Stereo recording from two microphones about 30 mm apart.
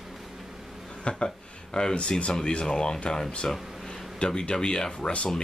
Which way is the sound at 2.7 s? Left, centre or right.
Left.